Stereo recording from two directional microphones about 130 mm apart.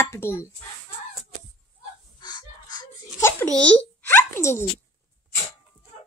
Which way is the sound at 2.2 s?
30° left (ahead or behind).